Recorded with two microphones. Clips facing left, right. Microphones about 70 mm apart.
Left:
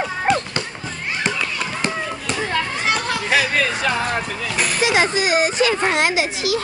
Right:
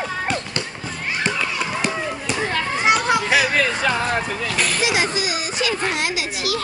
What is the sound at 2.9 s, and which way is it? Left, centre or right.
Chatter, centre.